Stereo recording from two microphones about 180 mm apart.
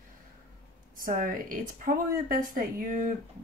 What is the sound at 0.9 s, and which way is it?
A woman's voice, 50° right (ahead or behind).